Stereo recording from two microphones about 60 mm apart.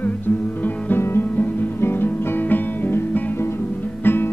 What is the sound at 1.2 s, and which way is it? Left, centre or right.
Music, left.